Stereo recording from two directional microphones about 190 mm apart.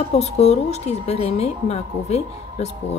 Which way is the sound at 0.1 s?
35° left (ahead or behind).